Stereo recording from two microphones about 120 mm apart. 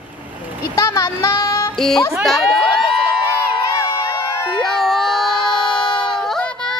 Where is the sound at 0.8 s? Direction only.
25° left (ahead or behind).